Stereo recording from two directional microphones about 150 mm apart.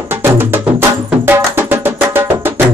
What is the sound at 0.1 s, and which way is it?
Music, 15° right (ahead or behind).